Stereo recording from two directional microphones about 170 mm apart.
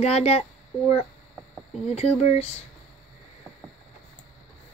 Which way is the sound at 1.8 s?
35° left (ahead or behind).